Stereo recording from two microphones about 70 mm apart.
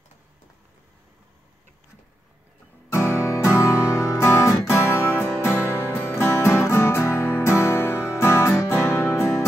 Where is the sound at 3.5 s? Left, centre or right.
Left.